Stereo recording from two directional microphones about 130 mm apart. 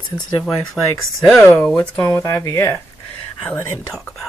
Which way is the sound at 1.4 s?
15° left (ahead or behind).